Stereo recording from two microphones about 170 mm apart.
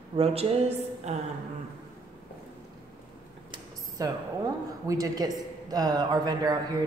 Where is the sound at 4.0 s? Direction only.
20° right (ahead or behind).